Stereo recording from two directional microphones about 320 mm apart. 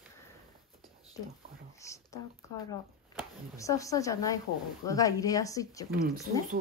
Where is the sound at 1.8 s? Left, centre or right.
Centre.